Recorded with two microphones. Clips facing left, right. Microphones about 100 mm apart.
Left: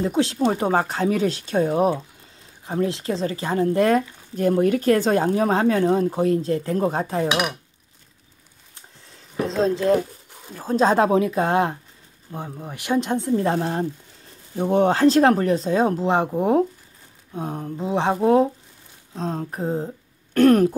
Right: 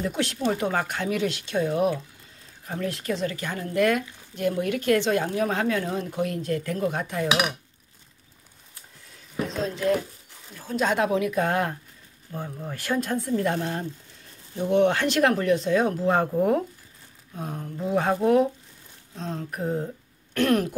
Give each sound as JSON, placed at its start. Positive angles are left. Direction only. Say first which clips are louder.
{"t": 0.0, "sound": "speech", "louder": "left 6 dB", "side_deg": 30}
{"t": 2.6, "sound": "speech", "louder": "left 6 dB", "side_deg": 25}
{"t": 9.4, "sound": "speech", "louder": "left 6 dB", "side_deg": 35}